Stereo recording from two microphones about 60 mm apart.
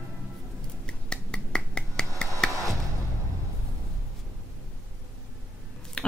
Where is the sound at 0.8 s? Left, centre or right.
Centre.